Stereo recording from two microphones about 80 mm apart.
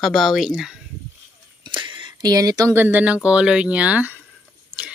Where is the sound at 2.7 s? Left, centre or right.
Right.